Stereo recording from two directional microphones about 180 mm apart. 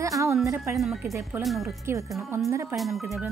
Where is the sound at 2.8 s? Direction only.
Centre (ahead or behind).